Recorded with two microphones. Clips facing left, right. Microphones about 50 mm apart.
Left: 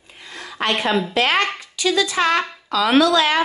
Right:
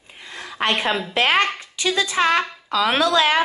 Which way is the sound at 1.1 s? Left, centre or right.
Right.